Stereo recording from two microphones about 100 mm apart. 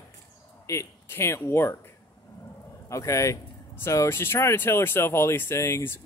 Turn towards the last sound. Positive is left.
turn(degrees=25)  # may be behind; listen again after turning